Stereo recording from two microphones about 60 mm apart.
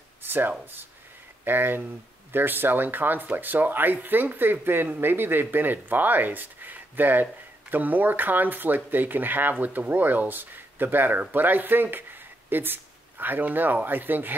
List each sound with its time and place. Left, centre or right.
0.2 s speech: right